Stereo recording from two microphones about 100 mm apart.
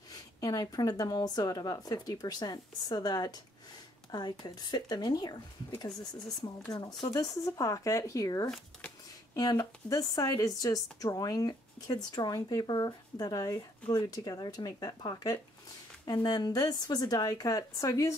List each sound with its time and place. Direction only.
0.1 s speech: 40° left (ahead or behind)
6.4 s speech: 45° left (ahead or behind)